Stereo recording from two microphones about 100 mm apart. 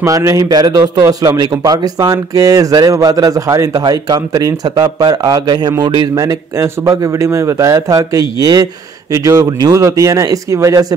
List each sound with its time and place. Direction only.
0.0 s speech: 35° right (ahead or behind)
6.1 s speech: 30° right (ahead or behind)